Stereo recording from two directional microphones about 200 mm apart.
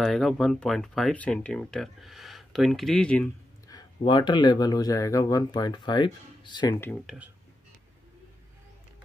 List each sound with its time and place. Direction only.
0.0 s speech: centre (ahead or behind)
3.6 s speech: 20° left (ahead or behind)
6.7 s speech: 10° left (ahead or behind)